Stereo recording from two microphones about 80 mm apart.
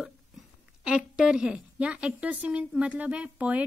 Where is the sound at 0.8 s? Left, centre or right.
Centre.